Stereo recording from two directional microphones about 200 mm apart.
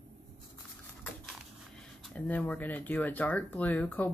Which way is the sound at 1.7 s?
5° left (ahead or behind).